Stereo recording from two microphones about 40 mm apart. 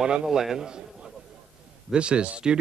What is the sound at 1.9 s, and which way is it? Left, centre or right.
Speech, right.